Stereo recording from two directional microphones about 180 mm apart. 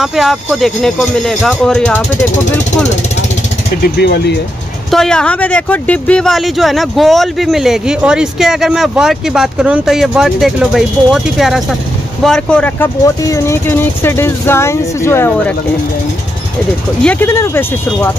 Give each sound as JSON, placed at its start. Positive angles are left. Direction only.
{"t": 0.0, "sound": "speech", "side_deg": 0}
{"t": 3.8, "sound": "speech", "side_deg": 65}
{"t": 4.9, "sound": "speech", "side_deg": 5}
{"t": 13.0, "sound": "speech", "side_deg": 20}
{"t": 17.0, "sound": "speech", "side_deg": 10}